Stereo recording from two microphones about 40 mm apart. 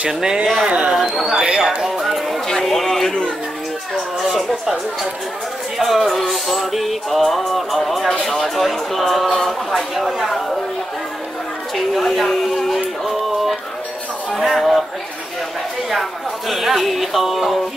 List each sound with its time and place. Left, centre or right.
0.1 s speech: centre
0.7 s speech: right
1.4 s a sound: centre
2.4 s a sound: centre
3.1 s speech: left
4.2 s a sound: centre
5.8 s music: centre
11.7 s speech: centre
14.3 s music: centre
15.9 s music: centre